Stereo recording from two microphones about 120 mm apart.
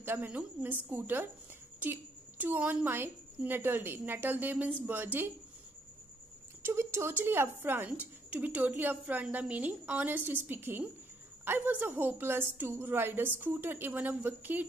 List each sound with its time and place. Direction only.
0.0 s a woman's voice: 15° right (ahead or behind)
6.6 s a woman's voice: 20° right (ahead or behind)